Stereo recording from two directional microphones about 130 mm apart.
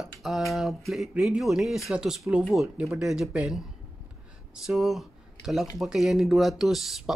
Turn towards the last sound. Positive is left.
turn(degrees=0)  # may be behind; listen again after turning